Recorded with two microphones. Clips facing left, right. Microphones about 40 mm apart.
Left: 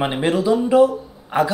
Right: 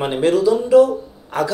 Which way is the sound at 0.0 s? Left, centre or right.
Centre.